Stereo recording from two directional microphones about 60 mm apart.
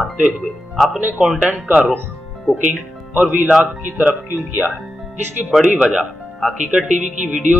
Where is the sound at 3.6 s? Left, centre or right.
Right.